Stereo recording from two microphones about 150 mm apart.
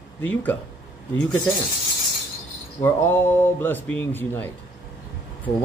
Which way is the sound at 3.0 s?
15° left (ahead or behind).